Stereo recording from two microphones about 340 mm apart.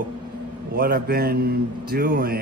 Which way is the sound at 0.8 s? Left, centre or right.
Right.